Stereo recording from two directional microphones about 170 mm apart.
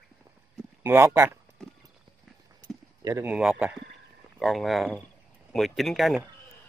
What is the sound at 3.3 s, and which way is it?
Speech, 5° right (ahead or behind).